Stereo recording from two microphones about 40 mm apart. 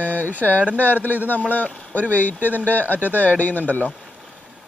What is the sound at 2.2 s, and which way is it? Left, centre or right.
Speech, left.